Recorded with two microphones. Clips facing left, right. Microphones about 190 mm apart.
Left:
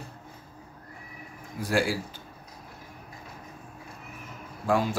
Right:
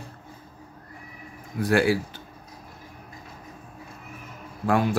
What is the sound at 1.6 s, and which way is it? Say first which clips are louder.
Speech: right 5 dB; 60° right (ahead or behind).